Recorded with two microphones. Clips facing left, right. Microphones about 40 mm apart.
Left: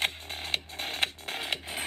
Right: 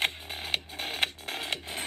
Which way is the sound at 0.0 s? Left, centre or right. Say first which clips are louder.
Right 1 dB; centre.